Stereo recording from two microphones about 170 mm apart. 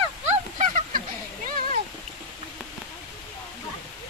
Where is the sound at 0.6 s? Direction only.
55° right (ahead or behind).